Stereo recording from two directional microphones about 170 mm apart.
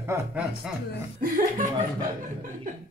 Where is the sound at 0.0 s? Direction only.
10° right (ahead or behind).